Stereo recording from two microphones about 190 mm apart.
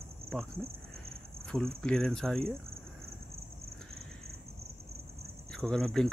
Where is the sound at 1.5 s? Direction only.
Centre (ahead or behind).